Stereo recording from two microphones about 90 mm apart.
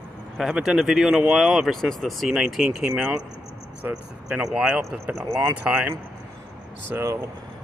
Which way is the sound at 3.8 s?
25° right (ahead or behind).